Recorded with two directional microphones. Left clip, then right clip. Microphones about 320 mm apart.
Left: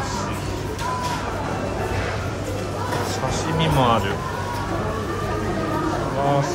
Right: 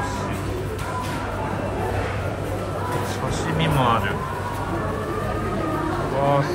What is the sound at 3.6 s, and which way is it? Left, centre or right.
Speech, centre.